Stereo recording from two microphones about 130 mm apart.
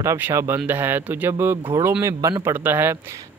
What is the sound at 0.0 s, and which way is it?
Speech, 20° right (ahead or behind).